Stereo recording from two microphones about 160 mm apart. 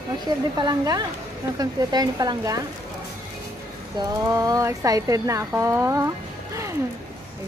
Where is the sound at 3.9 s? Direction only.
25° right (ahead or behind).